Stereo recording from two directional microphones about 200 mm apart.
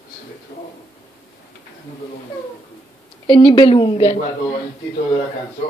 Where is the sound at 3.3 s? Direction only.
25° left (ahead or behind).